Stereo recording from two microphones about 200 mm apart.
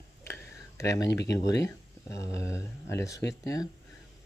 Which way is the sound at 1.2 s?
15° left (ahead or behind).